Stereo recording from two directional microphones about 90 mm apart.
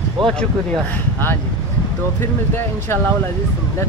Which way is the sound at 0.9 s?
25° left (ahead or behind).